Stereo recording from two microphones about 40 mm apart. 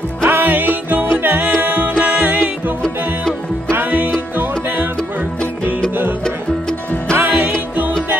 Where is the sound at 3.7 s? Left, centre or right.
Right.